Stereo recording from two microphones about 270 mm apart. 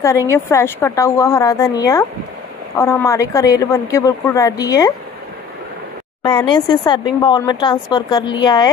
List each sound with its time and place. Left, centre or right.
0.0 s speech: centre
6.2 s speech: centre